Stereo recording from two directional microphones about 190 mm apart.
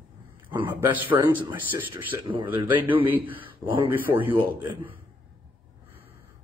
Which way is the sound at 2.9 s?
10° right (ahead or behind).